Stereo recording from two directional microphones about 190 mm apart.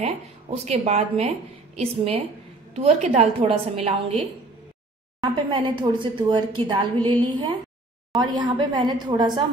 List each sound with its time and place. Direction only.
0.0 s speech: 35° right (ahead or behind)
5.2 s a woman's voice: 25° right (ahead or behind)